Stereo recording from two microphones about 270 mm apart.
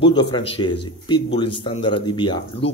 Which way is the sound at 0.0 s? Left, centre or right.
Centre.